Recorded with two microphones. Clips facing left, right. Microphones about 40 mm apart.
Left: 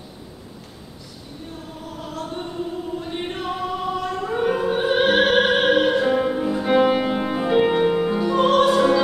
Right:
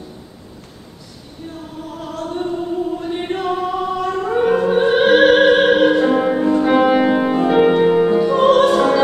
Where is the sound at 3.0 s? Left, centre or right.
Centre.